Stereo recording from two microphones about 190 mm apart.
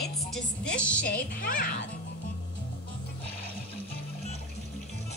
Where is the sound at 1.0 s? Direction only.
50° left (ahead or behind).